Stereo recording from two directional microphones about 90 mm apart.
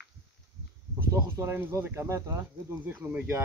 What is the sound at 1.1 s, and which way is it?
Speech, 30° right (ahead or behind).